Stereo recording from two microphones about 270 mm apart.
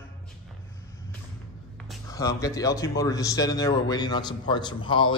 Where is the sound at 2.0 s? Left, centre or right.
Centre.